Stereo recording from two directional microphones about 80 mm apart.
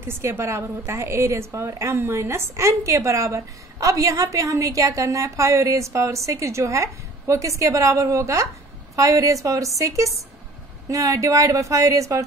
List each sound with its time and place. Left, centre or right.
0.0 s a woman's voice: right